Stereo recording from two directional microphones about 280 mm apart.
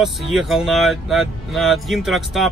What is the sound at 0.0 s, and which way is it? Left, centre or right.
Speech, centre.